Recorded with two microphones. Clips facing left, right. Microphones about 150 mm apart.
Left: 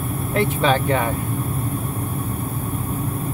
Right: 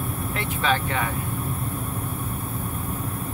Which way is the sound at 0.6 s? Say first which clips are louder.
Left 3 dB; 30° left (ahead or behind).